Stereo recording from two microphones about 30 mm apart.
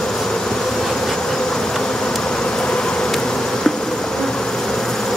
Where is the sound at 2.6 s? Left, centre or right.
Left.